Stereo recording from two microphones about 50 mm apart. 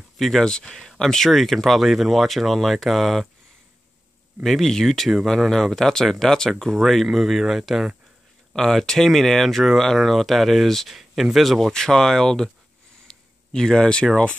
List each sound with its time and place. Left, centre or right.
0.2 s speech: centre
0.5 s speech: centre
4.4 s speech: centre
8.5 s speech: centre
11.7 s speech: centre
13.0 s a sound: centre